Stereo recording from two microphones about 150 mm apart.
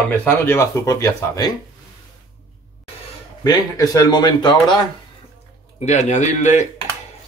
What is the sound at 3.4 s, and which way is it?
Speech, 25° left (ahead or behind).